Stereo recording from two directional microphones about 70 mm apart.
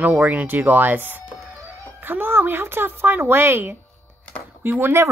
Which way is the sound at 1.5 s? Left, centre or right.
Right.